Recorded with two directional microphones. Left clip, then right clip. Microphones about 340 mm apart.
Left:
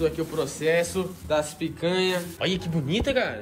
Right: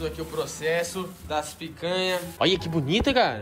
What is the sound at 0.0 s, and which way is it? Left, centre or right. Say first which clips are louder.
A man's voice: left 4 dB; centre.